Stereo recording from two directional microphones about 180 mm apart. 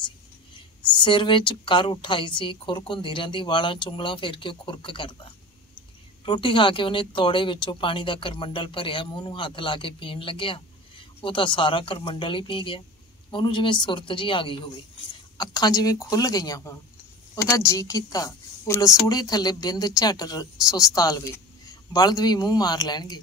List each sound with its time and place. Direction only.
0.8 s speech: 25° left (ahead or behind)
6.2 s speech: 25° left (ahead or behind)